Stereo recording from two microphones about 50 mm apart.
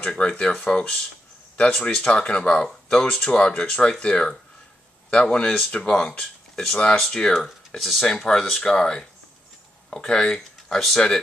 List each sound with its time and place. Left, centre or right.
0.0 s speech: centre
7.3 s speech: centre